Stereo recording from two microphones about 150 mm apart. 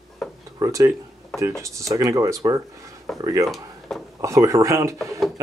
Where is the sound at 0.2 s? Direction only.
Centre (ahead or behind).